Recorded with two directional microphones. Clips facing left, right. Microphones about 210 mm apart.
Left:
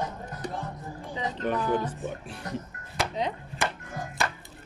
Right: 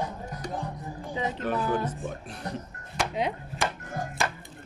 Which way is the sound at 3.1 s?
10° right (ahead or behind).